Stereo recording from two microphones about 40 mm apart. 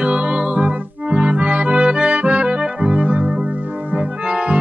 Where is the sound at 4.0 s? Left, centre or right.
Right.